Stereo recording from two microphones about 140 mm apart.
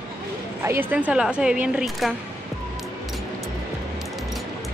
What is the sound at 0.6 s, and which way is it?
Speech, 15° right (ahead or behind).